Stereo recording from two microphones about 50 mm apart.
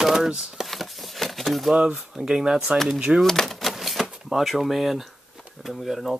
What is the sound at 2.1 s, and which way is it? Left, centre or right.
Speech, centre.